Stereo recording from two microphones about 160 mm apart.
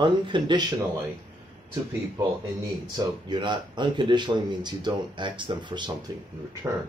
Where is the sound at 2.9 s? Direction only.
30° right (ahead or behind).